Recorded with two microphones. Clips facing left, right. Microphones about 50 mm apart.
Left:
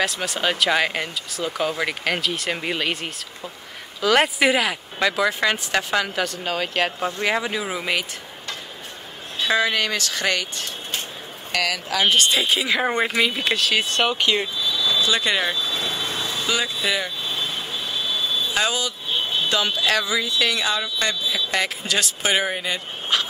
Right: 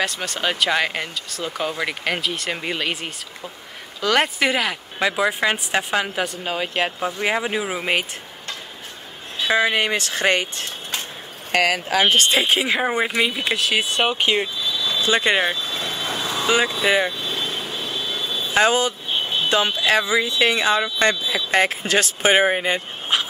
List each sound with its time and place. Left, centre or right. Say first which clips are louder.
0.0 s speech: left 1 dB; centre
5.0 s speech: even; centre
7.9 s a sound: right 2 dB; right
9.5 s speech: right 2 dB; right
12.8 s speech: even; centre; by 14.4 s right
14.6 s vehicle: left 1 dB; right
14.9 s speech: right 3 dB; right; by 16.0 s centre
16.0 s a sound: right 1 dB; right
16.3 s vehicle: right 7 dB; right
19.8 s speech: right 3 dB; right